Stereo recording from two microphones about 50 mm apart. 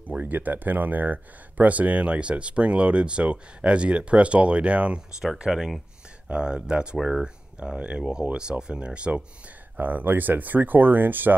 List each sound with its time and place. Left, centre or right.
0.2 s speech: right
5.4 s speech: centre
6.2 s speech: right
7.0 s speech: centre
7.6 s speech: right
9.8 s speech: right